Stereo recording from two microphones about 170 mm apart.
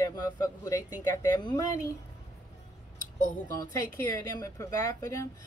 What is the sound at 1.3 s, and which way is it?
Speech, 20° left (ahead or behind).